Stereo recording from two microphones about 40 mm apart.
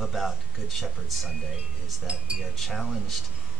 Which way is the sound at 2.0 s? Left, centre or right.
Right.